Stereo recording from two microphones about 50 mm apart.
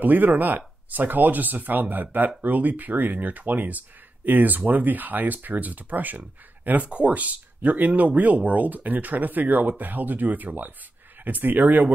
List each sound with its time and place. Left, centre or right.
0.0 s speech: right